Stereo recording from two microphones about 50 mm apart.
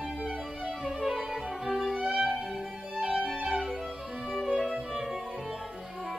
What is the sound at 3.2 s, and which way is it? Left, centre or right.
Music, centre.